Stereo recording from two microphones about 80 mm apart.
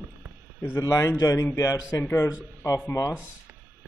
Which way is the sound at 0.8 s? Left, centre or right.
Left.